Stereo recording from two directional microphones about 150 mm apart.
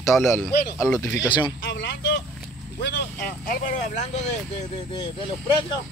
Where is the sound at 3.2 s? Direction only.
70° left (ahead or behind).